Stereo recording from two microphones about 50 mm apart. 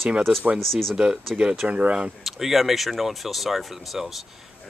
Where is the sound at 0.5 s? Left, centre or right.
Centre.